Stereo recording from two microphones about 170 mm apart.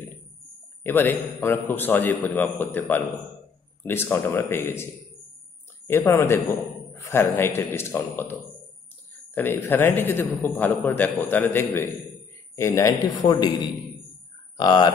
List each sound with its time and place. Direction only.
0.8 s a man's voice: 10° left (ahead or behind)
5.9 s a man's voice: 15° left (ahead or behind)